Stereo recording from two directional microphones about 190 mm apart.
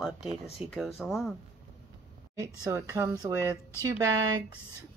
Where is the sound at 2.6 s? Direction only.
15° right (ahead or behind).